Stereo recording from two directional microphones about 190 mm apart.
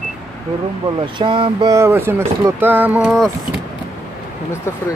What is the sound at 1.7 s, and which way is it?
Speech, 15° right (ahead or behind).